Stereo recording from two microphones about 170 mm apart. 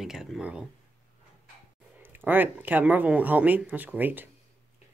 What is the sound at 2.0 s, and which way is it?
Speech, 10° right (ahead or behind).